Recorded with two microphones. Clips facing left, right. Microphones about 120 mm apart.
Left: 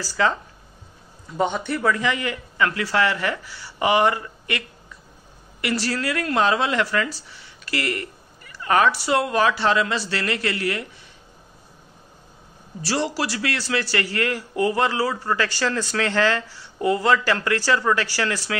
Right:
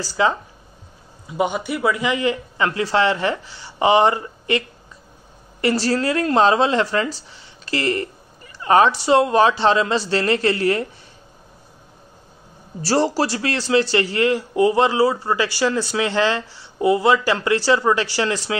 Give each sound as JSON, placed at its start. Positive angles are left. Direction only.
{"t": 0.0, "sound": "speech", "side_deg": -15}
{"t": 12.8, "sound": "speech", "side_deg": -35}